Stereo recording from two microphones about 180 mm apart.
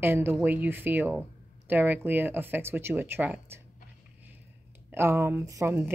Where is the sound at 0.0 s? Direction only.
10° right (ahead or behind).